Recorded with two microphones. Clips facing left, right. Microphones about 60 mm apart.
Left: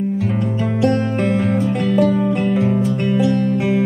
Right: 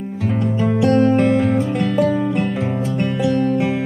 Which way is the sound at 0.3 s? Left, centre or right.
Centre.